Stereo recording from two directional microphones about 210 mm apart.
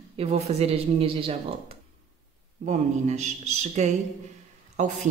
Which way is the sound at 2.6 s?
35° right (ahead or behind).